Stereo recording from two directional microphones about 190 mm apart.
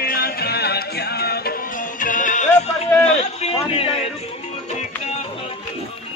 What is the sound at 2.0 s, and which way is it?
Music, 45° left (ahead or behind).